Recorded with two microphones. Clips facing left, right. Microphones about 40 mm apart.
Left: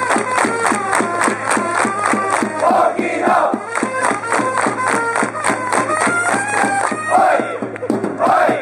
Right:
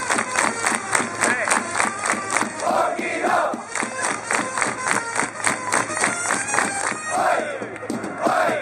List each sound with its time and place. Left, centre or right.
0.1 s music: centre
8.2 s battle cry: centre